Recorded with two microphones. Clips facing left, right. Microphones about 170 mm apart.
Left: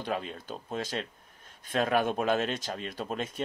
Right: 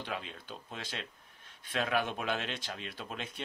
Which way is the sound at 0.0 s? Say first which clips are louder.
Left 7 dB; 40° left (ahead or behind).